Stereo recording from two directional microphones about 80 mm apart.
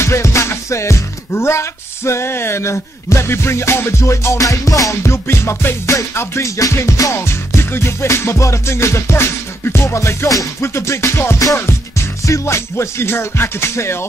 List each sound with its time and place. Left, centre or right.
0.0 s music: left